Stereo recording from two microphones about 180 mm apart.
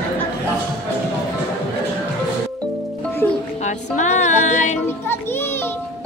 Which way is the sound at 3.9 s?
40° left (ahead or behind).